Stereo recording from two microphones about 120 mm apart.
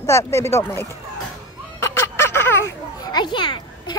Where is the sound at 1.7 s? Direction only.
20° left (ahead or behind).